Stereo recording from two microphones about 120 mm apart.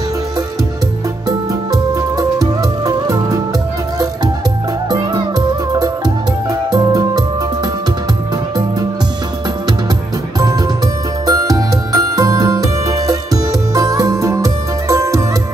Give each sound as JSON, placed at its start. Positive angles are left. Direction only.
{"t": 1.5, "sound": "music", "side_deg": -30}
{"t": 4.8, "sound": "music", "side_deg": -35}
{"t": 11.2, "sound": "music", "side_deg": -30}